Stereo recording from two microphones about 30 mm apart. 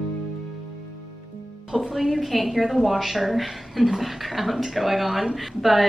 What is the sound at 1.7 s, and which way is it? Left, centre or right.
Speech, right.